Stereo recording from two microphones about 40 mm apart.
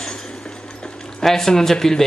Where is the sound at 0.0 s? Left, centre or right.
Centre.